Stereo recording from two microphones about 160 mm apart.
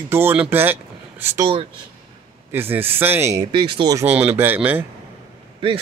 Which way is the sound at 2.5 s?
15° right (ahead or behind).